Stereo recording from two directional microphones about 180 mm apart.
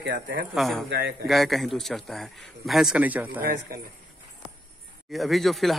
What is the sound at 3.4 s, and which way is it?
Speech, 55° right (ahead or behind).